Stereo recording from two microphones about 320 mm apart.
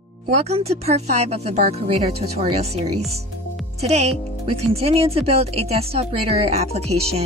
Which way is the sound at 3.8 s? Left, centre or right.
Centre.